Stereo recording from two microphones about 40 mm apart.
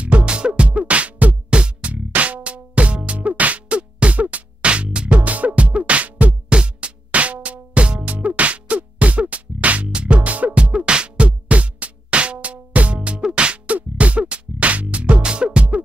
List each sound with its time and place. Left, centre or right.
0.0 s music: right
6.5 s music: right
10.6 s music: right